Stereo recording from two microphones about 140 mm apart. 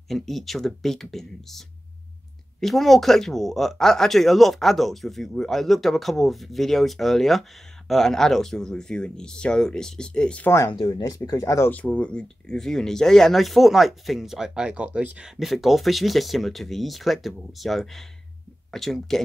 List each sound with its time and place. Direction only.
0.1 s speech: centre (ahead or behind)
10.7 s speech: 35° left (ahead or behind)
11.7 s speech: 10° left (ahead or behind)